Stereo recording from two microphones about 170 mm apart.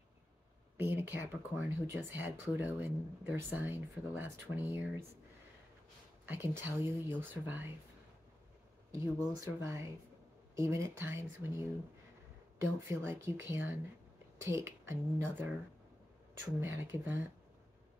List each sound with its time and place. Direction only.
0.7 s speech: 10° right (ahead or behind)
6.2 s speech: 15° right (ahead or behind)
8.9 s speech: 15° right (ahead or behind)
12.6 s speech: 15° right (ahead or behind)
16.6 s speech: 15° right (ahead or behind)